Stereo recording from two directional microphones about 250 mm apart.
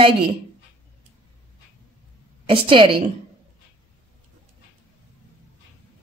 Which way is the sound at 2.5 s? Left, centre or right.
Right.